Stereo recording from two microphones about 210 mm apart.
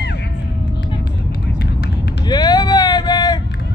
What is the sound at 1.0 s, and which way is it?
Vehicle, 50° left (ahead or behind).